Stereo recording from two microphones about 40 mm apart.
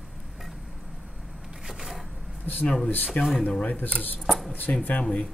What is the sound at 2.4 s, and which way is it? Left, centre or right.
Speech, left.